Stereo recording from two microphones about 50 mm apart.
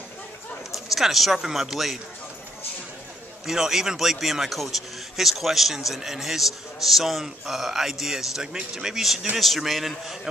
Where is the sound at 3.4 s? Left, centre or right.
Centre.